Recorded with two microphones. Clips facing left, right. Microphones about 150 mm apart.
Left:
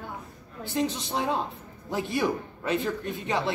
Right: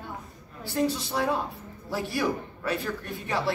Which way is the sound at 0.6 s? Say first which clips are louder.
Right 1 dB; 20° left (ahead or behind).